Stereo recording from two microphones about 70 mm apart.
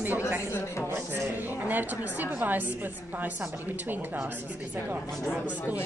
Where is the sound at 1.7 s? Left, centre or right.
Right.